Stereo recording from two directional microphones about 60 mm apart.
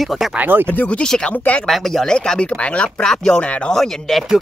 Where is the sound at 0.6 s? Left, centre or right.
Left.